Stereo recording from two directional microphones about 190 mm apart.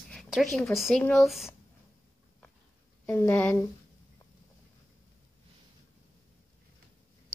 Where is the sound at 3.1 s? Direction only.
10° left (ahead or behind).